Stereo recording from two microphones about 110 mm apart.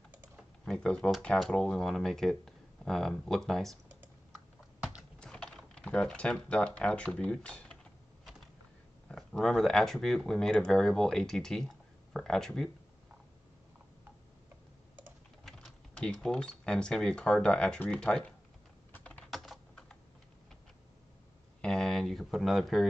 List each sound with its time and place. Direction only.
0.7 s speech: 5° left (ahead or behind)
5.2 s speech: 10° left (ahead or behind)
9.1 s speech: 5° left (ahead or behind)
15.4 s speech: 5° left (ahead or behind)
18.9 s typing: 15° left (ahead or behind)
19.3 s typing: centre (ahead or behind)
21.5 s a sound: 5° left (ahead or behind)